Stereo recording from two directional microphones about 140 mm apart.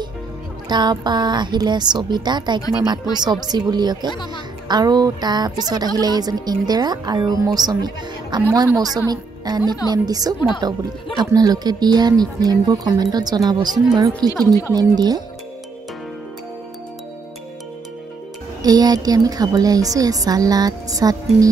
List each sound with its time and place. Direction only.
0.7 s a woman's voice: 30° right (ahead or behind)
18.6 s speech: 25° right (ahead or behind)